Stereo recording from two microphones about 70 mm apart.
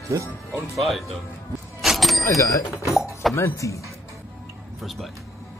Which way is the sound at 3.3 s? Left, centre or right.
Left.